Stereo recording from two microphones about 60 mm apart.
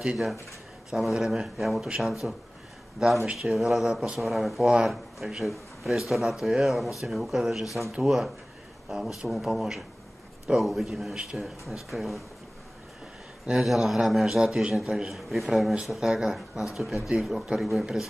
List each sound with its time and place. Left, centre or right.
0.8 s speech: centre
13.5 s speech: centre
13.8 s speech: centre